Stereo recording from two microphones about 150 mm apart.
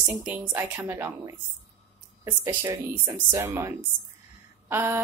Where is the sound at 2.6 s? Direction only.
15° right (ahead or behind).